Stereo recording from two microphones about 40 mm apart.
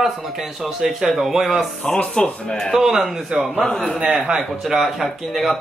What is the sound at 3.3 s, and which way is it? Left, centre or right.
Speech, right.